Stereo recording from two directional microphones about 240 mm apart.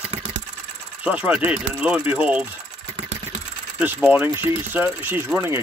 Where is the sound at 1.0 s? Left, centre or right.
Centre.